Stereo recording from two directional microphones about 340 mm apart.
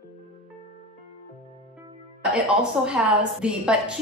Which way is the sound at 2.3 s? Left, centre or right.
Centre.